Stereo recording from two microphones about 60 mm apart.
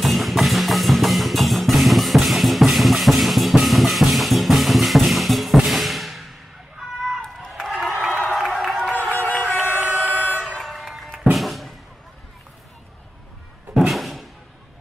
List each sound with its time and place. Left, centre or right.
0.0 s music: centre
7.6 s crowd: centre
9.3 s vehicle: left
10.4 s vehicle: centre
11.3 s music: centre
13.7 s a sound: centre